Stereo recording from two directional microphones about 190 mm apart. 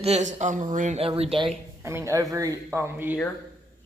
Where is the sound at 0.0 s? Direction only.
35° right (ahead or behind).